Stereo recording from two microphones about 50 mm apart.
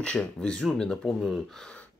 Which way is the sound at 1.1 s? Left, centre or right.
Centre.